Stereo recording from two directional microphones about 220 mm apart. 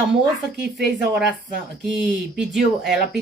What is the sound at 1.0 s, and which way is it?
Speech, 5° right (ahead or behind).